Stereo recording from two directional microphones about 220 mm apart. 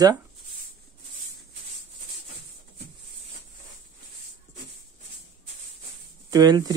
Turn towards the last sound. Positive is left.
turn(degrees=-15)  # may be behind; listen again after turning